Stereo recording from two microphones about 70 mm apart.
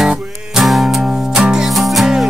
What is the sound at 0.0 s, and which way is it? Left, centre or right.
Music, centre.